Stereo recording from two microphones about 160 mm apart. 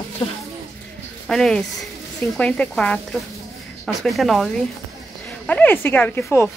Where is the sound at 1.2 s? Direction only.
5° left (ahead or behind).